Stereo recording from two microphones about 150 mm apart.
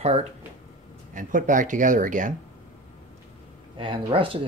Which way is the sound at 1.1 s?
60° right (ahead or behind).